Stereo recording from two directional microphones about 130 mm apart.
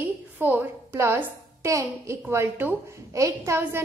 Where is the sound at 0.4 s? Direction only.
15° right (ahead or behind).